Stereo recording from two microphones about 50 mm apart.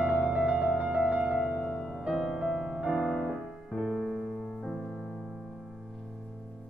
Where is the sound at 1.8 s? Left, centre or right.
Centre.